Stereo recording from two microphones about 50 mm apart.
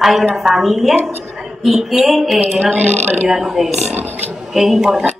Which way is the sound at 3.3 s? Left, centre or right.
Centre.